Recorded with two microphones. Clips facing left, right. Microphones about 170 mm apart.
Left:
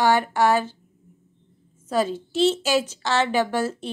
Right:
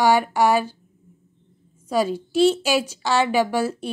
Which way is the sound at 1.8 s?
10° right (ahead or behind).